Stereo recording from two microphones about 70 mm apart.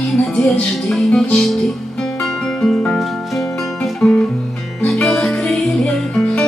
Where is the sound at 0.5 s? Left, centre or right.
Centre.